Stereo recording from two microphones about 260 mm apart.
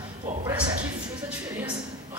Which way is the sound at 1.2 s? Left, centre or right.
Centre.